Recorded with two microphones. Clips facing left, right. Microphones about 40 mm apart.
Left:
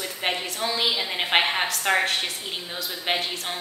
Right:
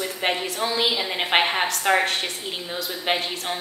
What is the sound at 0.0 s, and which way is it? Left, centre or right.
A woman's voice, centre.